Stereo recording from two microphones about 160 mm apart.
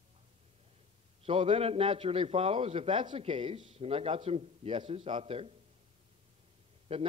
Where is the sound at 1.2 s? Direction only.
35° right (ahead or behind).